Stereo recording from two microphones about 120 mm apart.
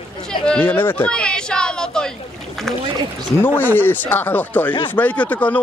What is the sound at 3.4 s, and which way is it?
Speech, 15° left (ahead or behind).